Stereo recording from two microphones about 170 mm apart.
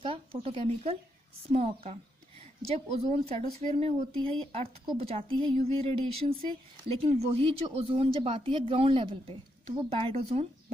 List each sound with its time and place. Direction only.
0.0 s speech: 35° right (ahead or behind)